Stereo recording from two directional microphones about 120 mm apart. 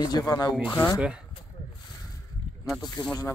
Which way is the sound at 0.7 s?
25° left (ahead or behind).